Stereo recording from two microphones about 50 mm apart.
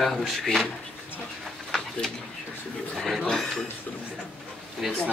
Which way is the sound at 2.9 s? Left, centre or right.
Centre.